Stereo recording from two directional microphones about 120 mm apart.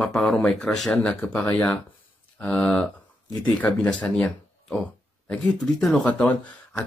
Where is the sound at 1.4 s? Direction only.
20° left (ahead or behind).